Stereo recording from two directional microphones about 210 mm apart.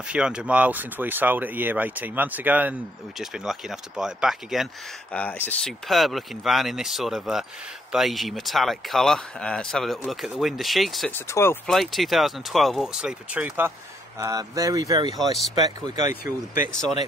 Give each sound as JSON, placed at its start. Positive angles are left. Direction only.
{"t": 0.1, "sound": "speech", "side_deg": -5}
{"t": 11.1, "sound": "speech", "side_deg": 10}
{"t": 11.7, "sound": "speech", "side_deg": 0}
{"t": 15.1, "sound": "speech", "side_deg": 0}